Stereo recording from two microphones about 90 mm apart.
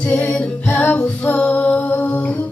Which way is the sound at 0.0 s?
15° left (ahead or behind).